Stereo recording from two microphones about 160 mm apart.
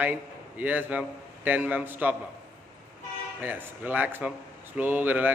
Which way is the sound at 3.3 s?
10° right (ahead or behind).